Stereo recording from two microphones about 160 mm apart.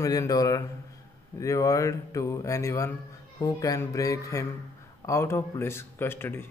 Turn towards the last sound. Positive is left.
turn(degrees=15)  # may be behind; listen again after turning